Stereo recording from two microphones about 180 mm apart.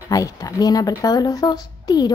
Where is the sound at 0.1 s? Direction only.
20° left (ahead or behind).